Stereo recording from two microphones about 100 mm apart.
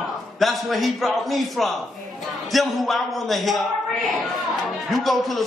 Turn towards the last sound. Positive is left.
turn(degrees=0)  # may be behind; listen again after turning